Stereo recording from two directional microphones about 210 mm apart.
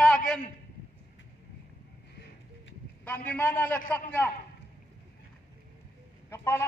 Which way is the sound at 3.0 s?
5° left (ahead or behind).